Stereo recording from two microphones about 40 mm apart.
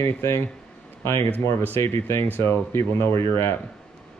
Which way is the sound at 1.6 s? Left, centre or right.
Left.